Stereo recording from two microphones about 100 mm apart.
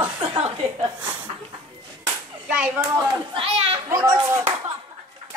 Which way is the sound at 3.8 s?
30° right (ahead or behind).